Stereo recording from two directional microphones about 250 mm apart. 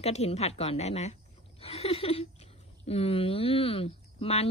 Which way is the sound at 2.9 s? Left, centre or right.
Left.